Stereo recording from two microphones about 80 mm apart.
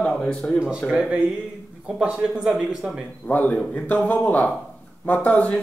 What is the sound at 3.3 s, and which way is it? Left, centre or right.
Speech, left.